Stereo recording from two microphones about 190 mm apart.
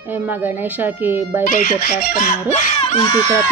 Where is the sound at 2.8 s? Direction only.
30° left (ahead or behind).